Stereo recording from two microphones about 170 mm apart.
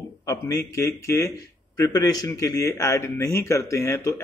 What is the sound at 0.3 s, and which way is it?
A man's voice, 20° left (ahead or behind).